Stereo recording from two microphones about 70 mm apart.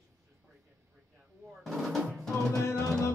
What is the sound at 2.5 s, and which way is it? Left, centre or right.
Music, left.